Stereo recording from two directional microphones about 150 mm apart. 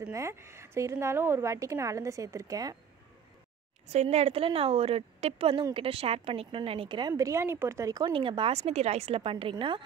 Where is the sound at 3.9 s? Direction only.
45° right (ahead or behind).